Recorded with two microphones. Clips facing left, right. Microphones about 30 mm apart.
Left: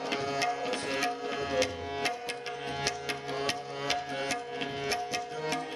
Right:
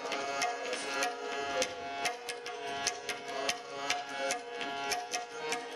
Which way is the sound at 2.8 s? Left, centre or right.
Left.